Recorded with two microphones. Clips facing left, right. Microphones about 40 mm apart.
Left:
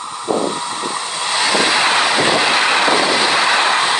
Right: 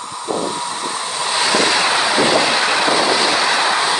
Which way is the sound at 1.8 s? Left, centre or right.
Left.